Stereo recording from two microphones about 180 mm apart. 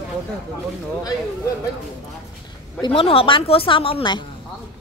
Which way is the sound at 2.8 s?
30° left (ahead or behind).